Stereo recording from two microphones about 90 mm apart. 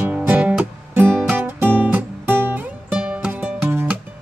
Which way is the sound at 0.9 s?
25° right (ahead or behind).